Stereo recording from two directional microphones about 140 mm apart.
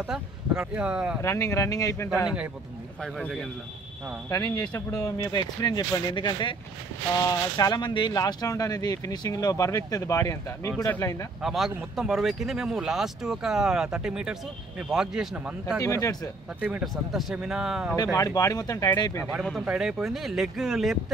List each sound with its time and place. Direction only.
0.1 s speech: 5° right (ahead or behind)
1.2 s speech: 20° left (ahead or behind)
2.2 s speech: 10° right (ahead or behind)
3.0 s speech: 5° left (ahead or behind)
4.3 s speech: 20° left (ahead or behind)
11.4 s speech: centre (ahead or behind)
15.8 s speech: 25° left (ahead or behind)
16.6 s speech: 5° right (ahead or behind)
17.9 s speech: 25° left (ahead or behind)
19.6 s speech: 5° right (ahead or behind)